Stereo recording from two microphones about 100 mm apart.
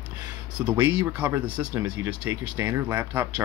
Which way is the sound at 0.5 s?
10° right (ahead or behind).